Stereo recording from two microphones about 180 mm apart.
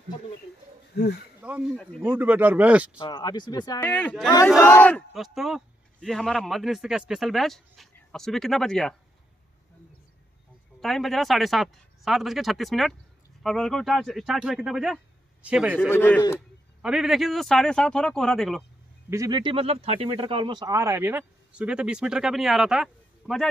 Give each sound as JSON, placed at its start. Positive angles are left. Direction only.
{"t": 0.9, "sound": "speech", "side_deg": 65}
{"t": 1.4, "sound": "speech", "side_deg": -5}
{"t": 1.8, "sound": "a man's voice", "side_deg": 5}
{"t": 2.0, "sound": "speech", "side_deg": -10}
{"t": 3.0, "sound": "speech", "side_deg": 25}
{"t": 3.8, "sound": "a man's voice", "side_deg": 10}
{"t": 10.8, "sound": "a man's voice", "side_deg": 0}
{"t": 15.9, "sound": "a man's voice", "side_deg": 15}
{"t": 16.8, "sound": "a man's voice", "side_deg": 0}
{"t": 19.0, "sound": "speech", "side_deg": -20}